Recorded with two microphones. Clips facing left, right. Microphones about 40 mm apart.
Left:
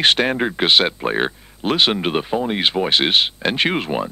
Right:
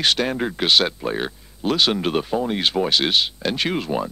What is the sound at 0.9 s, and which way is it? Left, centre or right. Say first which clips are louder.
Speech: left 5 dB; left.